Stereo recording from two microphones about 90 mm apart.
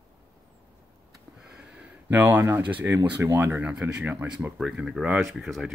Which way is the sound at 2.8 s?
20° right (ahead or behind).